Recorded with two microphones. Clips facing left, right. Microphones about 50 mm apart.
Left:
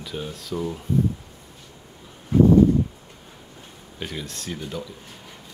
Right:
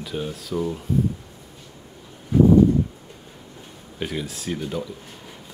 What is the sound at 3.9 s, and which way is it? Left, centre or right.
Speech, centre.